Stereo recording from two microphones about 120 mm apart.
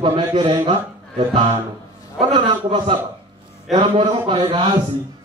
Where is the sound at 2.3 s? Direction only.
45° right (ahead or behind).